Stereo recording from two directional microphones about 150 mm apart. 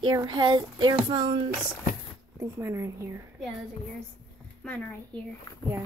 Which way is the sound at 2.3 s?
20° right (ahead or behind).